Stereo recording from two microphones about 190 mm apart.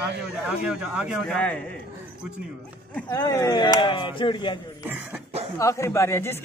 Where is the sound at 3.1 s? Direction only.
15° left (ahead or behind).